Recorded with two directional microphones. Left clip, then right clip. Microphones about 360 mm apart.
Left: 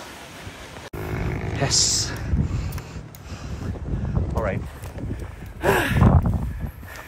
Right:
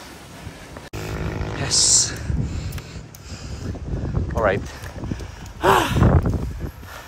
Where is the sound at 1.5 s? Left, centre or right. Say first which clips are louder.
Right 3 dB; centre.